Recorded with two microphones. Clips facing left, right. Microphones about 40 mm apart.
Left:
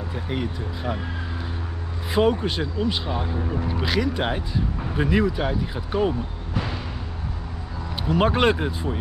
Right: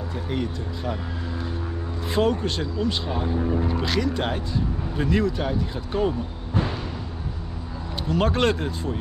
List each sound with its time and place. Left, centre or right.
0.1 s speech: centre
2.1 s speech: centre
8.1 s speech: centre